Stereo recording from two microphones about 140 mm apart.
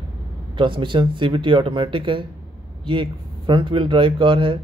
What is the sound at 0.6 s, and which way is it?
Speech, 35° right (ahead or behind).